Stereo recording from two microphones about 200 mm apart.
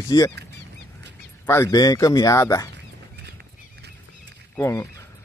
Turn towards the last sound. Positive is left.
turn(degrees=10)  # may be behind; listen again after turning